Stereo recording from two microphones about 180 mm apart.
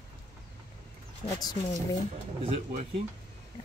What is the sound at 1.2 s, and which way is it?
Speech, 20° left (ahead or behind).